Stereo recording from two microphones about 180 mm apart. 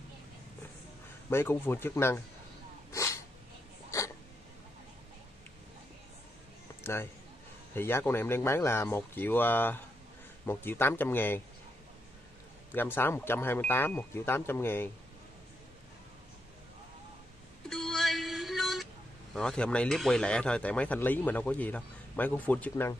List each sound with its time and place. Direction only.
1.3 s speech: 15° left (ahead or behind)
2.9 s dog: 15° left (ahead or behind)
6.8 s a sound: 15° left (ahead or behind)
7.7 s speech: 10° left (ahead or behind)
12.7 s speech: 10° left (ahead or behind)
17.6 s music: centre (ahead or behind)
19.3 s speech: 5° left (ahead or behind)